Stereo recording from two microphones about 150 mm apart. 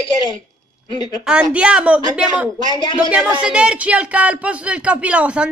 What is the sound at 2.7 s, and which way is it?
Speech, 30° left (ahead or behind).